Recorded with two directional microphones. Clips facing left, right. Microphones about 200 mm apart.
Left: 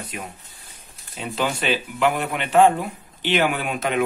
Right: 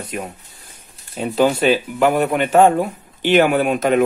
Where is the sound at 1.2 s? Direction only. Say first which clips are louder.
Right 9 dB; 40° right (ahead or behind).